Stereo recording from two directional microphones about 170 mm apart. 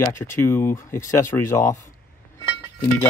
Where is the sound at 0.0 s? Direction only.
15° left (ahead or behind).